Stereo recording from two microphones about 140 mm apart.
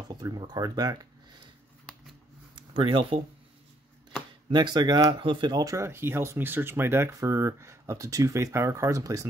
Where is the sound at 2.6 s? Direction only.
40° right (ahead or behind).